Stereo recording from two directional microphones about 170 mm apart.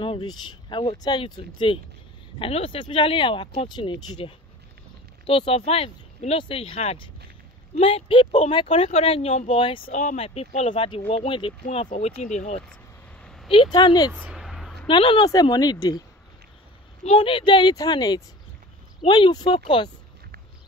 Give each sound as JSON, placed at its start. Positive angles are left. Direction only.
{"t": 0.0, "sound": "speech", "side_deg": 30}
{"t": 9.8, "sound": "speech", "side_deg": 45}
{"t": 11.9, "sound": "speech", "side_deg": 40}
{"t": 13.2, "sound": "a sound", "side_deg": 5}
{"t": 13.5, "sound": "speech", "side_deg": 30}
{"t": 14.1, "sound": "a sound", "side_deg": -5}
{"t": 14.9, "sound": "speech", "side_deg": 30}
{"t": 17.0, "sound": "speech", "side_deg": 35}